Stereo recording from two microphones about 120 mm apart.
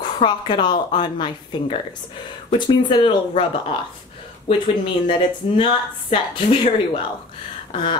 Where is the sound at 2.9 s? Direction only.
40° left (ahead or behind).